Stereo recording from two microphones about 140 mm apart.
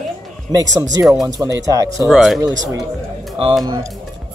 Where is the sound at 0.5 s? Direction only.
25° right (ahead or behind).